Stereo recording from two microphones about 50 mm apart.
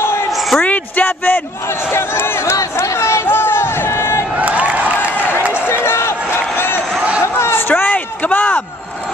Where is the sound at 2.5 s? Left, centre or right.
Left.